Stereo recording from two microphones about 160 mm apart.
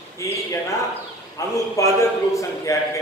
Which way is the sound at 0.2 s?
20° left (ahead or behind).